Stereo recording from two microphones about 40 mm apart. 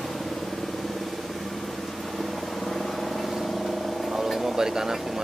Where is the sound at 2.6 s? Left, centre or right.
Centre.